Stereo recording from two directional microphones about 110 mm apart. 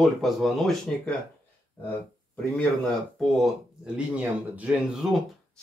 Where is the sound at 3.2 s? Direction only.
Centre (ahead or behind).